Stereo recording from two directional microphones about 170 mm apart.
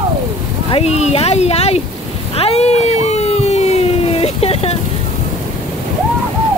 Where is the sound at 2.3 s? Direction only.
35° left (ahead or behind).